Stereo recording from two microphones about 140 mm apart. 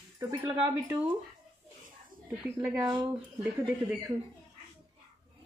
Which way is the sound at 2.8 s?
25° right (ahead or behind).